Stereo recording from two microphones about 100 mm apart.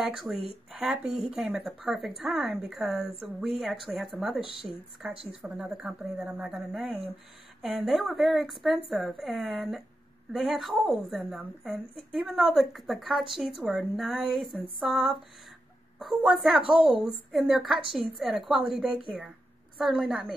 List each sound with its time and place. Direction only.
0.0 s speech: 5° right (ahead or behind)
5.3 s speech: 15° right (ahead or behind)
16.2 s speech: 5° right (ahead or behind)